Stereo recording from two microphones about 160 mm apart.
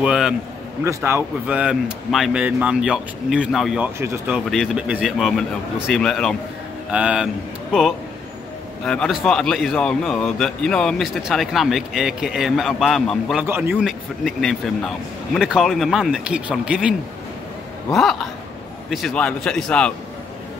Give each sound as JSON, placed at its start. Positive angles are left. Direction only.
{"t": 0.0, "sound": "a man's voice", "side_deg": -5}
{"t": 0.8, "sound": "a man's voice", "side_deg": -15}
{"t": 4.0, "sound": "speech", "side_deg": -15}
{"t": 4.5, "sound": "a man's voice", "side_deg": -5}
{"t": 6.9, "sound": "speech", "side_deg": -10}
{"t": 8.8, "sound": "a man's voice", "side_deg": 5}
{"t": 13.4, "sound": "a man's voice", "side_deg": -10}
{"t": 17.9, "sound": "a man's voice", "side_deg": 0}